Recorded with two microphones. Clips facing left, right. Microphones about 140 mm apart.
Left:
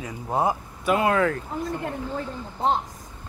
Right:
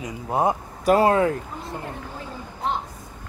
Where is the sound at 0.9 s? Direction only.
35° right (ahead or behind).